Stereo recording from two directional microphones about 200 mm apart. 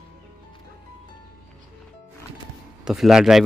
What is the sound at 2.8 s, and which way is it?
Speech, centre (ahead or behind).